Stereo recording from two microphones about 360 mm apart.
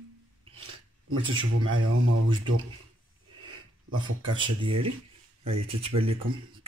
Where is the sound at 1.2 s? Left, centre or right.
Centre.